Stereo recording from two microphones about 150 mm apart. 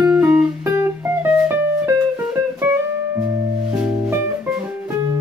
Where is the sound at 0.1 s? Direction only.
10° right (ahead or behind).